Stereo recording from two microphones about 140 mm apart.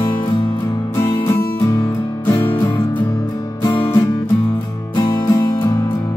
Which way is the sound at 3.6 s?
20° left (ahead or behind).